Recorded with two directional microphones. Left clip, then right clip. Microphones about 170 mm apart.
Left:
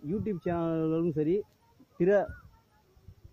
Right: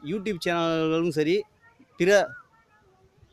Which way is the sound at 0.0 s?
25° right (ahead or behind).